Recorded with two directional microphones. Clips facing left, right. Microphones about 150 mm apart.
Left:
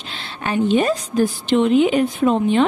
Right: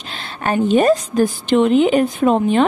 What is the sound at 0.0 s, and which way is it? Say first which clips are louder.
A woman's voice: right 4 dB; 45° right (ahead or behind).